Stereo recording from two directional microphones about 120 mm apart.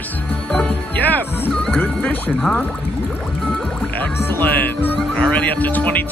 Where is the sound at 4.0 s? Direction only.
15° left (ahead or behind).